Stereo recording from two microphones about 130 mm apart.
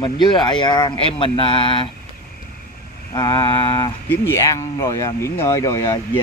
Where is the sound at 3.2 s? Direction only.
35° left (ahead or behind).